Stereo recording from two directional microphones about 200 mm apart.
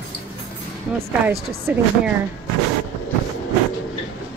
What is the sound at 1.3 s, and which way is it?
Speech, 50° right (ahead or behind).